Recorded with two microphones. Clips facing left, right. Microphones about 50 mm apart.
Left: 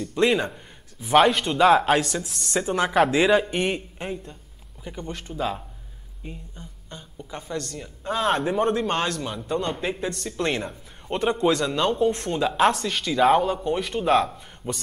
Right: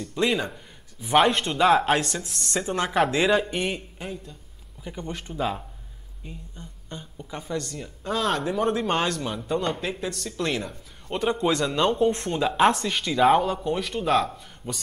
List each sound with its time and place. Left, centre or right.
0.0 s a man's voice: centre
4.9 s a woman's voice: centre
5.3 s a man's voice: centre
6.2 s speech: centre
6.9 s a woman's voice: centre
8.0 s speech: centre
8.7 s a man's voice: centre
9.8 s a man's voice: centre
11.6 s a man's voice: centre